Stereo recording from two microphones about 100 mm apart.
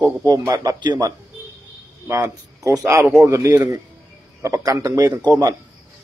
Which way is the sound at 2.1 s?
30° right (ahead or behind).